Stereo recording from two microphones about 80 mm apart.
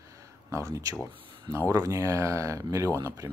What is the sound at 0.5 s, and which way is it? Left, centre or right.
Speech, right.